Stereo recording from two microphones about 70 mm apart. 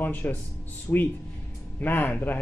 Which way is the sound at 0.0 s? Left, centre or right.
Left.